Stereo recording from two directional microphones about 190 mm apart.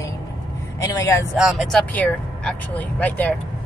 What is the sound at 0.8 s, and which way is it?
Speech, 15° left (ahead or behind).